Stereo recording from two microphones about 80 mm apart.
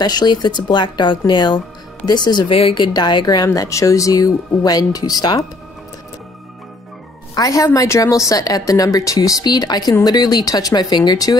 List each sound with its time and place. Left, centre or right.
0.0 s speech: left
3.4 s speech: left
7.3 s speech: left